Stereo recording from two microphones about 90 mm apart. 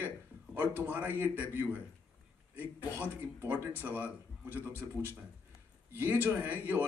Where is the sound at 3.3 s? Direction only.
20° right (ahead or behind).